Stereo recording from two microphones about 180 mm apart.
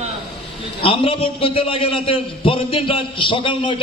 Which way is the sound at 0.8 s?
30° left (ahead or behind).